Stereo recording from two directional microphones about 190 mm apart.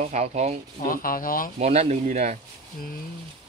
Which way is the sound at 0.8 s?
50° left (ahead or behind).